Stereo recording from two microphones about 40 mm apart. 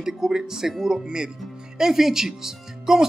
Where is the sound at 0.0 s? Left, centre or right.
Centre.